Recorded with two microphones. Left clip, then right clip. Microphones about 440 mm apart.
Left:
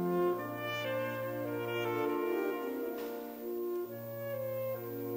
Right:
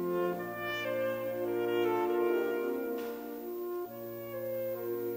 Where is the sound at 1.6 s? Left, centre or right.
Centre.